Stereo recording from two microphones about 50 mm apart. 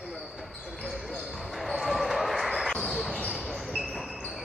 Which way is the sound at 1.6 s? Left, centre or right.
Centre.